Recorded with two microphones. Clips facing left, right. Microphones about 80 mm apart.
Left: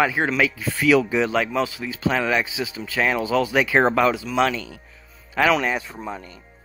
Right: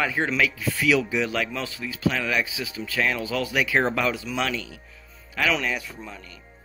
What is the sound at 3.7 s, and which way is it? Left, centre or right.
Speech, left.